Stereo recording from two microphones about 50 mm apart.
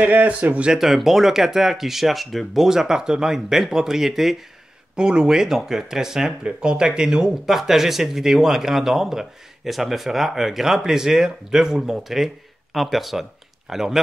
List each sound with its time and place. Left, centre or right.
0.0 s speech: right
0.7 s speech: centre